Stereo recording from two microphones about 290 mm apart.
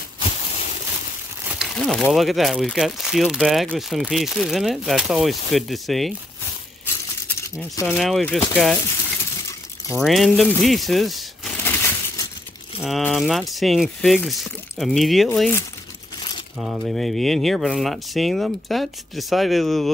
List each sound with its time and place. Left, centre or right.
1.5 s speech: centre
7.7 s speech: centre
9.5 s a sound: centre
10.0 s a sound: centre
12.8 s speech: centre
16.5 s speech: centre